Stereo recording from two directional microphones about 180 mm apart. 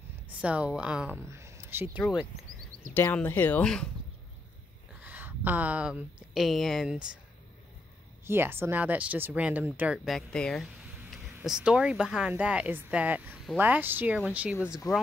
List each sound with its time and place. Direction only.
0.4 s speech: 5° right (ahead or behind)
2.9 s speech: 10° left (ahead or behind)
5.0 s a sound: 10° right (ahead or behind)
6.3 s speech: centre (ahead or behind)
8.3 s speech: 10° right (ahead or behind)
14.8 s speech: 20° left (ahead or behind)